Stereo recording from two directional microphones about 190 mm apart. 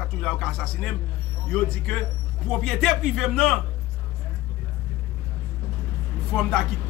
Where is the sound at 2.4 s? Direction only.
Centre (ahead or behind).